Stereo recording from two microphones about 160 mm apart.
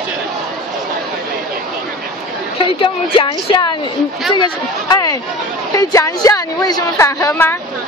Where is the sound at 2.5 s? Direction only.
35° left (ahead or behind); by 7.5 s 15° left (ahead or behind).